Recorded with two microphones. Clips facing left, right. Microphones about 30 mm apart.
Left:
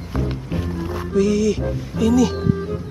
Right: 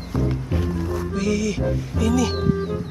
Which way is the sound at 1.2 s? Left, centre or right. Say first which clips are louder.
Left 7 dB; centre.